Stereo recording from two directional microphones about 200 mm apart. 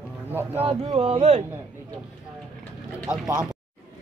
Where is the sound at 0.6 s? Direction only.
30° right (ahead or behind).